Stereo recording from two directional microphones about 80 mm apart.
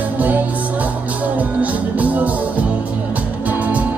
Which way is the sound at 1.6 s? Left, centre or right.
Centre.